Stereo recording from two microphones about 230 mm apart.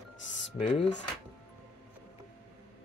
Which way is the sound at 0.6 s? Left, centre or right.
Left.